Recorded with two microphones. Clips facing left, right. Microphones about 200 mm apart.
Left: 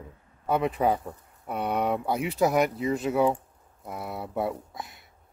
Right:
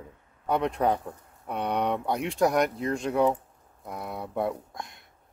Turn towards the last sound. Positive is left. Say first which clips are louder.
# left 1 dB
turn(degrees=5)  # may be behind; listen again after turning